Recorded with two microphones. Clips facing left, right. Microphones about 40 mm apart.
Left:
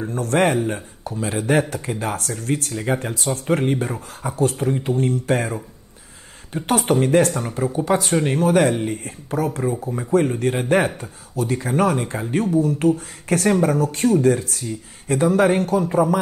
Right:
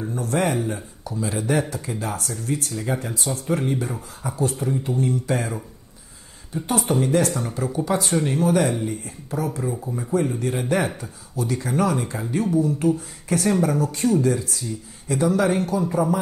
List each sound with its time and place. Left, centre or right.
0.0 s speech: left
0.6 s speech: left
6.5 s speech: left
9.6 s speech: left